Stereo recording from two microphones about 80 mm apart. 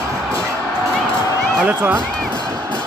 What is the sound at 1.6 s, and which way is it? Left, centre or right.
Speech, centre.